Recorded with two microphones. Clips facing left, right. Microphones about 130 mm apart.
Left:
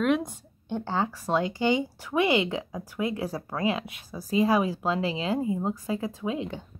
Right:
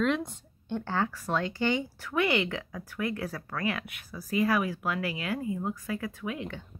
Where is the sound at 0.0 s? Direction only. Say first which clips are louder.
Left 3 dB; 15° left (ahead or behind).